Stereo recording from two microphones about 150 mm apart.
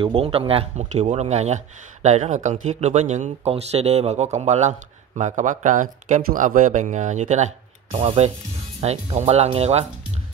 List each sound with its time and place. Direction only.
0.0 s speech: 40° right (ahead or behind)